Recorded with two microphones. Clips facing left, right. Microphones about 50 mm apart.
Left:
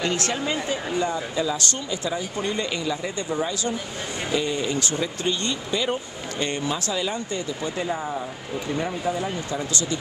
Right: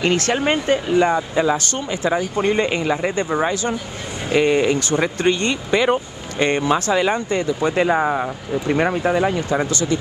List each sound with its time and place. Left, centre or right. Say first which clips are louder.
0.3 s speech: right 8 dB; right
7.7 s speech: right 11 dB; right